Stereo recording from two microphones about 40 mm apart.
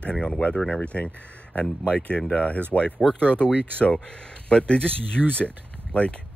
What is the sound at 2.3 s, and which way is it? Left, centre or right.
Speech, left.